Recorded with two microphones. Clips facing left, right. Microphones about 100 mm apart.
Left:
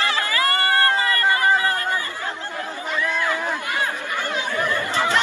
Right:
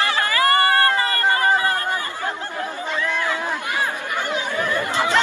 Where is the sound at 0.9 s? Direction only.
35° right (ahead or behind).